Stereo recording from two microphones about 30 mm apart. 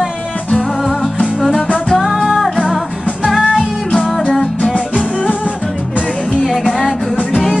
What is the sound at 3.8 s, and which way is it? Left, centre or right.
Music, left.